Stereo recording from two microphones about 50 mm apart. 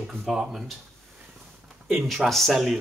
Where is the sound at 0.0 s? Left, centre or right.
Centre.